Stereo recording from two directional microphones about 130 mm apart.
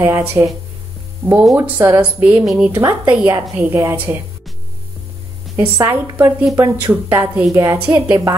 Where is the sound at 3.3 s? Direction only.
20° right (ahead or behind).